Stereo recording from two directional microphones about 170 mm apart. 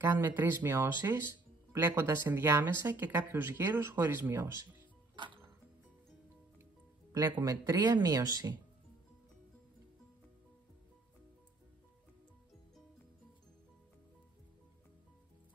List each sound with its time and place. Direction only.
0.0 s speech: 15° right (ahead or behind)
5.1 s music: 30° right (ahead or behind)
7.1 s speech: 20° right (ahead or behind)